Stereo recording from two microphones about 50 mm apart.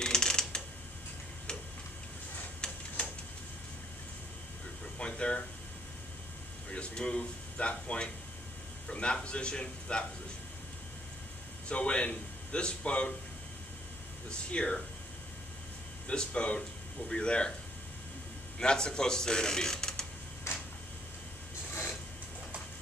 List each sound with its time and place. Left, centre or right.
0.0 s a sound: centre
2.6 s a sound: centre
4.9 s air conditioning: centre
6.7 s a man's voice: left
11.7 s a man's voice: left
14.5 s speech: centre
16.1 s a man's voice: left
18.6 s speech: centre